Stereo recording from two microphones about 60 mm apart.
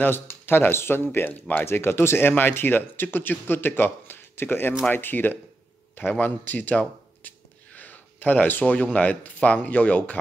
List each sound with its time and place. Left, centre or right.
0.0 s speech: left
5.9 s gasp: left
8.9 s speech: left